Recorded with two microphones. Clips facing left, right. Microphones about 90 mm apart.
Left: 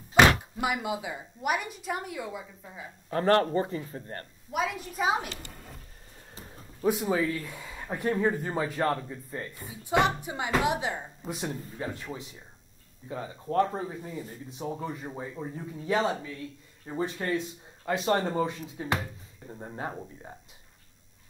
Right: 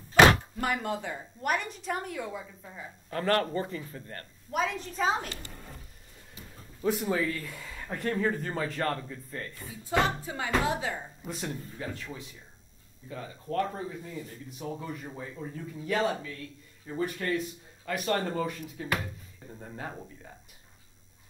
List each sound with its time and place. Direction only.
0.4 s speech: 10° left (ahead or behind)
3.1 s speech: 30° left (ahead or behind)
4.5 s speech: 5° left (ahead or behind)
6.3 s a sound: 35° left (ahead or behind)
6.9 s speech: 10° left (ahead or behind)
11.8 s speech: 25° left (ahead or behind)